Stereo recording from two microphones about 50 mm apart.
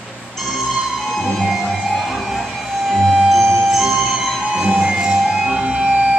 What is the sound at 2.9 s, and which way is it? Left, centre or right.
Music, centre.